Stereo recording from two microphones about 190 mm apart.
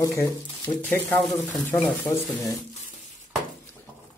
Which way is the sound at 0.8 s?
5° left (ahead or behind).